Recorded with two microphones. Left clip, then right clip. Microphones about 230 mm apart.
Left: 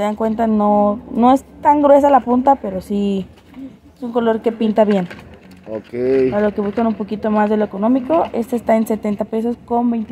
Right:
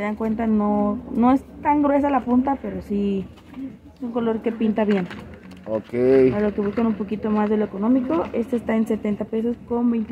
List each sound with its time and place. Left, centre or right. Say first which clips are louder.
0.0 s speech: left 7 dB; left
5.7 s speech: even; centre
6.3 s speech: left 5 dB; left